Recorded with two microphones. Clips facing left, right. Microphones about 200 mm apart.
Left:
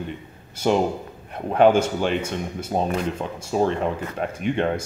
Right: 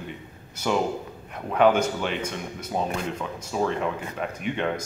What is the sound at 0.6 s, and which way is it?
A man's voice, 35° left (ahead or behind).